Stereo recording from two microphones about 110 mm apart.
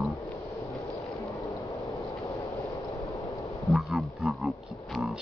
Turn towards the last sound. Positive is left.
turn(degrees=0)  # may be behind; listen again after turning